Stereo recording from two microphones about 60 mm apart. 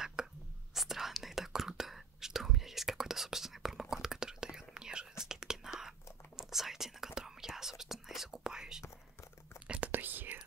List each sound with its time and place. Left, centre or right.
0.0 s whispering: centre
9.7 s whispering: right